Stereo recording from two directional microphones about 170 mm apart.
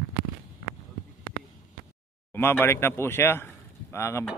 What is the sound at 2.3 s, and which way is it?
A man's voice, 10° left (ahead or behind).